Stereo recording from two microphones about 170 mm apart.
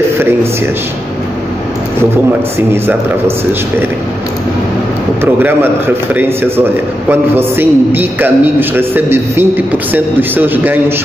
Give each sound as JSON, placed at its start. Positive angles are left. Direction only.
{"t": 2.7, "sound": "a man's voice", "side_deg": -15}
{"t": 5.2, "sound": "a man's voice", "side_deg": -10}